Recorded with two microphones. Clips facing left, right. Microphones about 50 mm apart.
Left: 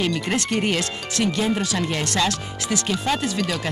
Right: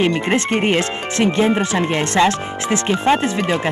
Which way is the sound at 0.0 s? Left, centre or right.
Right.